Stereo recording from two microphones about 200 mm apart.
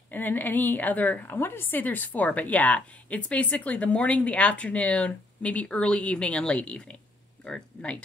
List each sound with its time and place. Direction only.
0.1 s a woman's voice: 10° left (ahead or behind)